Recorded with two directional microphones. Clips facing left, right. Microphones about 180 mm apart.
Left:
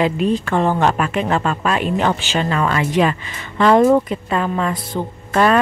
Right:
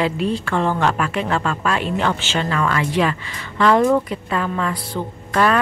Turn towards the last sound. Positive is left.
turn(degrees=25)  # may be behind; listen again after turning